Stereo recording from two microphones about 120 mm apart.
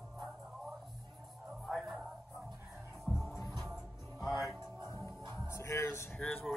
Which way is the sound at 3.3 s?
25° left (ahead or behind).